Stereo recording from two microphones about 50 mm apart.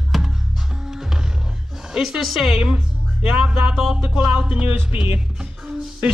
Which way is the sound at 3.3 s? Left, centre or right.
Centre.